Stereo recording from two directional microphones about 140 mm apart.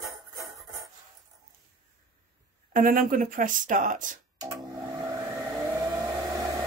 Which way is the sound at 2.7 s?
75° right (ahead or behind).